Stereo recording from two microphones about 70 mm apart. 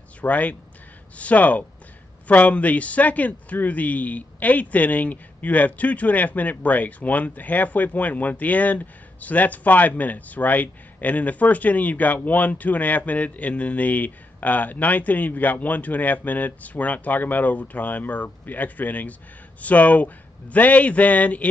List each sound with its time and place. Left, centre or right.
0.2 s speech: left